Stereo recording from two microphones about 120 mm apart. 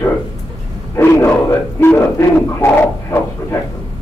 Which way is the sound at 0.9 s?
25° left (ahead or behind).